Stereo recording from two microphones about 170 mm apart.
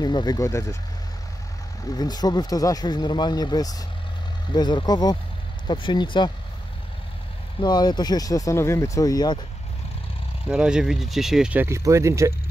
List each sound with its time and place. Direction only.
0.0 s speech: 25° left (ahead or behind)
2.0 s speech: 25° left (ahead or behind)
7.6 s speech: 25° left (ahead or behind)
10.5 s speech: 5° right (ahead or behind)